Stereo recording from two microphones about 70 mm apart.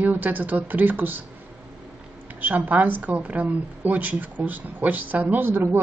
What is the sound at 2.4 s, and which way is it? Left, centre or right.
A woman's voice, right.